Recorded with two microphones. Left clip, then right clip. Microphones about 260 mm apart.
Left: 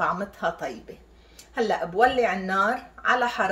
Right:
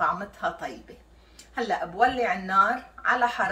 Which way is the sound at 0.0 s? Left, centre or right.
Left.